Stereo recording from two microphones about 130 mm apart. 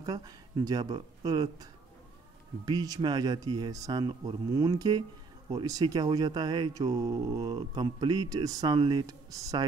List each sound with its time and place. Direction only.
0.0 s speech: 30° right (ahead or behind)